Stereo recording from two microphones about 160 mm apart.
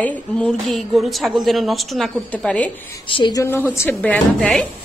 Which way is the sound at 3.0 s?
30° left (ahead or behind).